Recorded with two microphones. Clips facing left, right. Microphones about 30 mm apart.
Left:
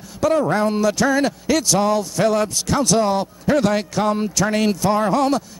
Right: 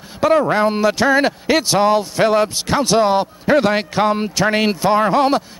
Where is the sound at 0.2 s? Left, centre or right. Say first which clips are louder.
Right 3 dB; right.